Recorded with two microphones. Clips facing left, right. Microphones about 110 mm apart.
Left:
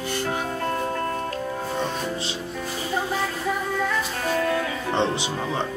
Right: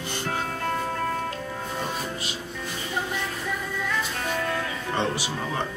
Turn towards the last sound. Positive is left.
turn(degrees=20)  # may be behind; listen again after turning